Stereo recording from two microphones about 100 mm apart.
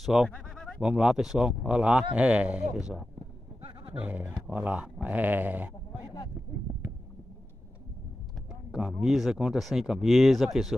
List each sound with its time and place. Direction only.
0.0 s speech: 5° right (ahead or behind)
0.3 s bleat: 10° left (ahead or behind)
0.7 s speech: 5° right (ahead or behind)
8.7 s speech: 5° right (ahead or behind)